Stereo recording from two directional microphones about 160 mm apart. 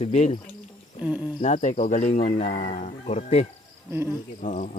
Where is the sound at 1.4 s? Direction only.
45° left (ahead or behind).